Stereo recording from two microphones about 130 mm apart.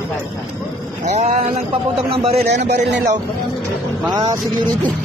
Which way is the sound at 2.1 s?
45° right (ahead or behind).